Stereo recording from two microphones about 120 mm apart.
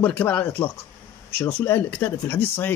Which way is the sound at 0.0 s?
15° left (ahead or behind).